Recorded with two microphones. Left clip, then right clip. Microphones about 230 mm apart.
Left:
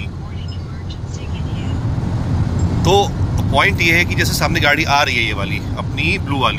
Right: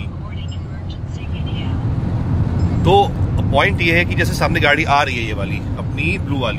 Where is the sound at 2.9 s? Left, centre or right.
Centre.